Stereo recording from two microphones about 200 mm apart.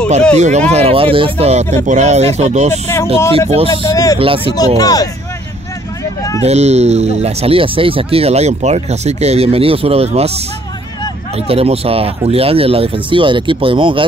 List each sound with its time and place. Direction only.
0.4 s speech: 35° right (ahead or behind)
3.7 s speech: 20° left (ahead or behind)
4.2 s speech: 25° right (ahead or behind)
4.7 s speech: 20° left (ahead or behind)
6.4 s speech: 35° right (ahead or behind)
11.3 s speech: 30° right (ahead or behind)